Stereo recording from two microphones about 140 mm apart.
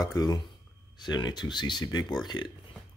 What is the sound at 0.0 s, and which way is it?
Speech, 25° left (ahead or behind).